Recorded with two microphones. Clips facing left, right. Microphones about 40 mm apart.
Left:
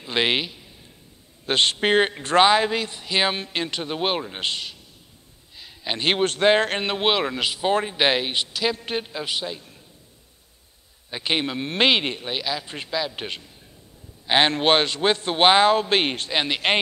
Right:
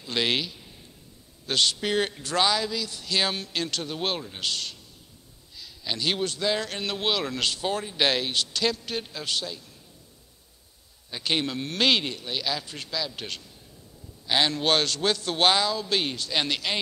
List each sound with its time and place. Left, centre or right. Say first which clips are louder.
0.0 s a man's voice: left 4 dB; left
2.9 s a man's voice: left 4 dB; left
6.9 s a man's voice: left 5 dB; left
7.3 s speech: left 2 dB; centre
7.6 s a man's voice: left 7 dB; left
7.9 s a man's voice: left 3 dB; left
9.0 s a man's voice: left 3 dB; left
11.1 s a man's voice: left 3 dB; left
12.6 s a man's voice: left 5 dB; left
15.6 s a man's voice: left 8 dB; left
16.3 s a man's voice: left 2 dB; left